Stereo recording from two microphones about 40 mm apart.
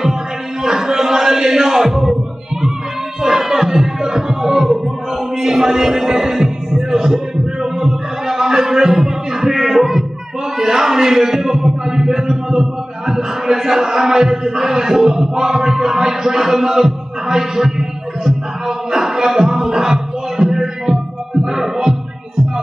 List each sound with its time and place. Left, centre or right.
0.6 s music: centre
3.2 s music: centre
5.4 s heart sounds: centre
7.6 s a sound: centre
19.0 s music: centre